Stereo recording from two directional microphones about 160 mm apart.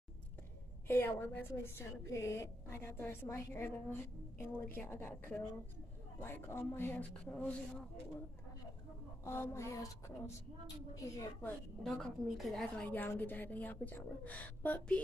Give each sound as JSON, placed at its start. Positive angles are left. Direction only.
{"t": 0.8, "sound": "a woman's voice", "side_deg": 15}
{"t": 9.2, "sound": "a woman's voice", "side_deg": 15}
{"t": 11.8, "sound": "a woman's voice", "side_deg": 0}